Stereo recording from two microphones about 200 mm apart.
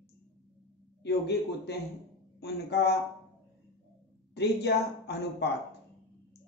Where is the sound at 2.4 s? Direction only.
55° left (ahead or behind).